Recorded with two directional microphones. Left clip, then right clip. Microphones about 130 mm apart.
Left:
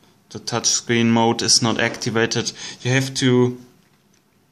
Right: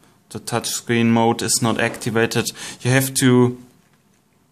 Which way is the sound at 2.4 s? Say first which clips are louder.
Right 1 dB; 35° right (ahead or behind).